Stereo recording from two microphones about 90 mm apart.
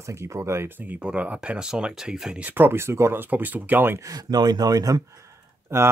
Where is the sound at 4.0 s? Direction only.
40° right (ahead or behind).